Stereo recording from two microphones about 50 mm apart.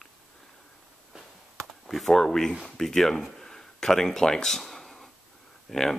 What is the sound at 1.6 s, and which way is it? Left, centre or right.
Speech, centre.